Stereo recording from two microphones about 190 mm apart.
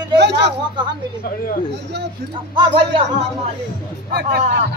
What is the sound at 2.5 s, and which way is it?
Speech, 25° right (ahead or behind).